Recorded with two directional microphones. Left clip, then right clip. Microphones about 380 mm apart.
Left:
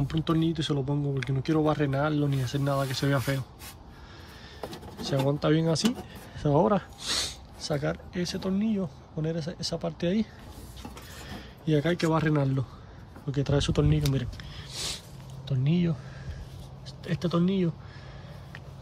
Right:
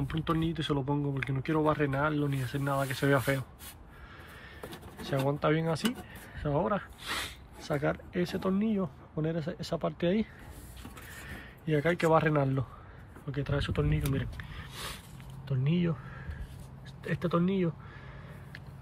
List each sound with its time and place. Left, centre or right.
0.1 s speech: centre
5.0 s speech: centre
17.0 s speech: centre